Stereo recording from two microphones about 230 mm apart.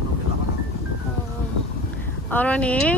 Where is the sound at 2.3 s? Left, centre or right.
Centre.